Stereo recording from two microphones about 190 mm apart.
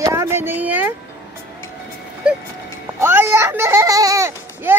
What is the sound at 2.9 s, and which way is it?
A child's voice, 15° right (ahead or behind).